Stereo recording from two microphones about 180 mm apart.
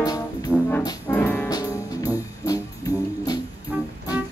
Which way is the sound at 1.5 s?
20° left (ahead or behind).